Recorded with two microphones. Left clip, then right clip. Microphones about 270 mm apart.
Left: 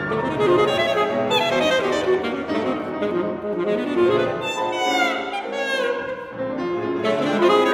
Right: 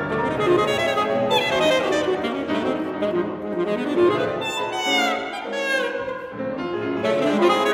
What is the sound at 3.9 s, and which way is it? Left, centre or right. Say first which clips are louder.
Music: even; centre.